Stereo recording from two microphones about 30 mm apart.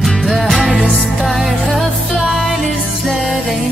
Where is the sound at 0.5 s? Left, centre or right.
Right.